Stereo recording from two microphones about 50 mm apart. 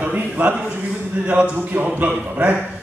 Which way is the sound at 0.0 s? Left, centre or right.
Right.